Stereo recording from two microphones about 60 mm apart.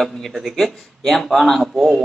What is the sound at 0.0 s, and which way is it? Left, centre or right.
Speech, centre.